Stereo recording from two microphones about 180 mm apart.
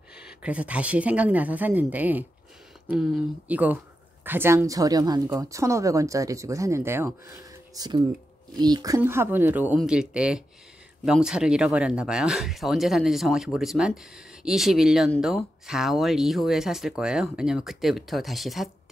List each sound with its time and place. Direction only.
0.4 s speech: 5° right (ahead or behind)